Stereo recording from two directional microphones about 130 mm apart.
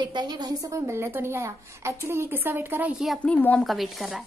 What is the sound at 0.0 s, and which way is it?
A woman's voice, 35° right (ahead or behind).